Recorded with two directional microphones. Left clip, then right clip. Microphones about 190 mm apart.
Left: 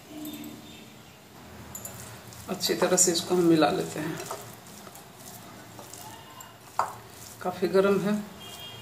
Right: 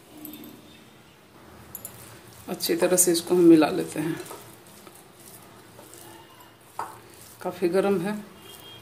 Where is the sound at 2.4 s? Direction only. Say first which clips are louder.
Right 2 dB; 40° right (ahead or behind).